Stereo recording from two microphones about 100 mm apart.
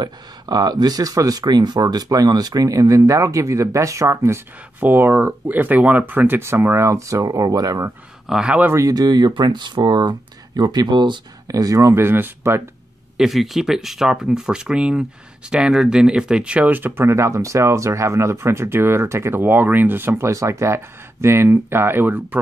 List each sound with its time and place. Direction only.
0.0 s speech: 40° right (ahead or behind)
8.3 s speech: 10° right (ahead or behind)
8.6 s speech: 30° right (ahead or behind)
8.9 s speech: 45° right (ahead or behind)
11.4 s speech: 35° right (ahead or behind)
13.2 s speech: centre (ahead or behind); by 22.4 s 20° right (ahead or behind)